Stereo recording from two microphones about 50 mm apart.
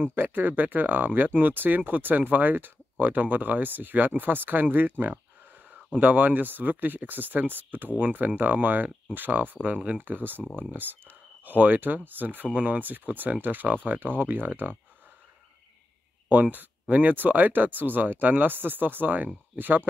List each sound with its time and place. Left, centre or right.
0.0 s speech: right
16.3 s speech: right